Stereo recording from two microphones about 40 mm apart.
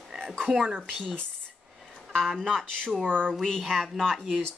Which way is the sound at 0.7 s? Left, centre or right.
Centre.